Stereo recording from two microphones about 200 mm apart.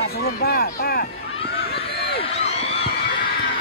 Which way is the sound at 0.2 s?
50° left (ahead or behind).